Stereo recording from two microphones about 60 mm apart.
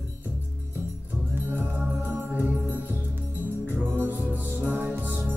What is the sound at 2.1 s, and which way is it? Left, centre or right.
Music, right.